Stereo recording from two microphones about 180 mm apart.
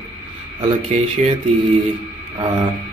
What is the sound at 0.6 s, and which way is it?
Speech, 40° right (ahead or behind).